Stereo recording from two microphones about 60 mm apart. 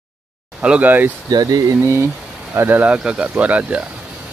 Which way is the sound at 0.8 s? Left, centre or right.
Right.